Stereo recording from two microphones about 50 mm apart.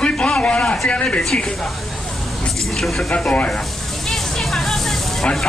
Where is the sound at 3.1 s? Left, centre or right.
Left.